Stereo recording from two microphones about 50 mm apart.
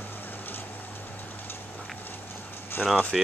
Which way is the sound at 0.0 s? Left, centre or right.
Left.